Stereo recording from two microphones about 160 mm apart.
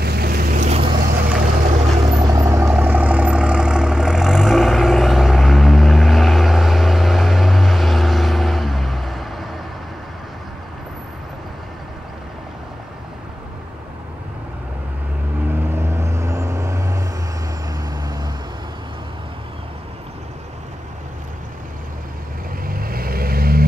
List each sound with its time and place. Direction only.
0.0 s boat: 75° right (ahead or behind); by 0.7 s 60° right (ahead or behind)
1.3 s vehicle: 45° right (ahead or behind)
2.1 s vehicle: 25° right (ahead or behind); by 9.6 s centre (ahead or behind)
15.4 s vehicle: 15° right (ahead or behind)
22.6 s vehicle: 65° right (ahead or behind)